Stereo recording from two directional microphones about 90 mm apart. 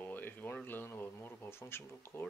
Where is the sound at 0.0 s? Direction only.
20° left (ahead or behind).